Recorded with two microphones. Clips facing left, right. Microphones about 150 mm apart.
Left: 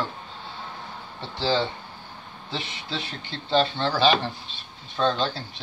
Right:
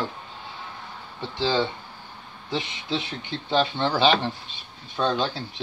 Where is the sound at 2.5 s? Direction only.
20° right (ahead or behind).